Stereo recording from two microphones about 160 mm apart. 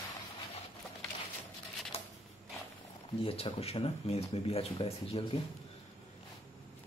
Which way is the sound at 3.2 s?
40° left (ahead or behind).